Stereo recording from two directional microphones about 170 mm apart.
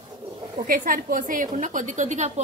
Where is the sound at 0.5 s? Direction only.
55° right (ahead or behind).